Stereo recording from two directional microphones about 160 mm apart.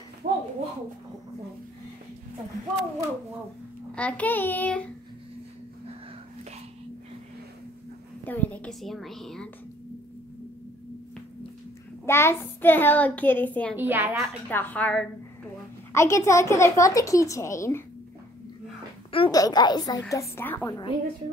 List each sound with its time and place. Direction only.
0.2 s a sound: 55° right (ahead or behind)
3.9 s a child's voice: 10° left (ahead or behind)
8.3 s a woman's voice: 10° left (ahead or behind)
12.1 s a child's voice: 15° left (ahead or behind)
13.7 s a woman's voice: 10° right (ahead or behind)
14.5 s a child's voice: 10° left (ahead or behind)
19.1 s a child's voice: 30° left (ahead or behind)